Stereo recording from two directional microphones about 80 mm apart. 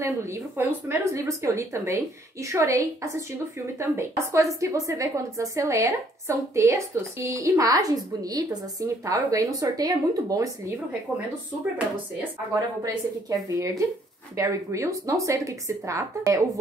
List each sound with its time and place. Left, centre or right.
0.6 s a woman's voice: right
12.8 s a woman's voice: right